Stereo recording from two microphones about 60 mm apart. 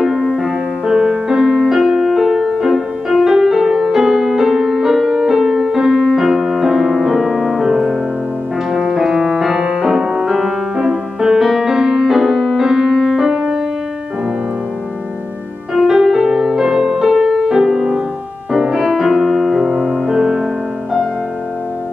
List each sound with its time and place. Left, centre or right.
0.0 s music: centre
6.0 s piano: centre
8.7 s music: centre
15.7 s music: centre